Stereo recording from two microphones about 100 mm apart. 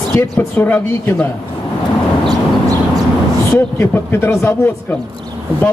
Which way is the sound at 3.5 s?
20° left (ahead or behind).